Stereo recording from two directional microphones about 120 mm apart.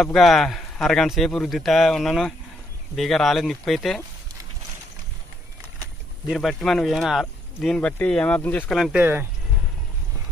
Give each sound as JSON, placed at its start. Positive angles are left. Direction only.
{"t": 0.0, "sound": "speech", "side_deg": 0}
{"t": 6.3, "sound": "speech", "side_deg": 5}
{"t": 8.7, "sound": "speech", "side_deg": 0}
{"t": 9.0, "sound": "speech", "side_deg": -20}